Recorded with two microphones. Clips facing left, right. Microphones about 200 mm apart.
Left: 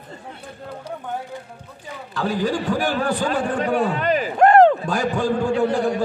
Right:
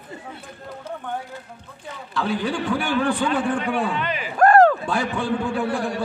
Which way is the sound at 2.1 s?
40° left (ahead or behind).